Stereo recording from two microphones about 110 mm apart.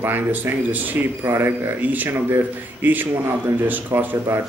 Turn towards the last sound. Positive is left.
turn(degrees=-15)  # may be behind; listen again after turning